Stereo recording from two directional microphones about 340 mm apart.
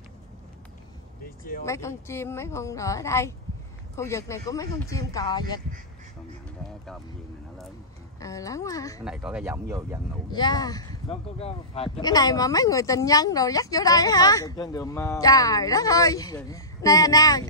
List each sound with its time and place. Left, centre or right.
1.2 s vehicle: left
1.7 s speech: centre
8.2 s speech: centre
9.0 s speech: centre
10.3 s speech: centre